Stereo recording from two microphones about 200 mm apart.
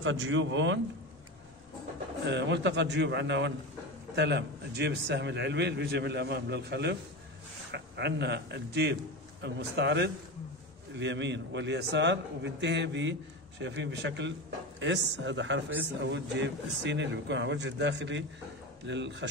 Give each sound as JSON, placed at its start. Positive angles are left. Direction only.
{"t": 0.0, "sound": "speech", "side_deg": -75}
{"t": 2.2, "sound": "a man's voice", "side_deg": -60}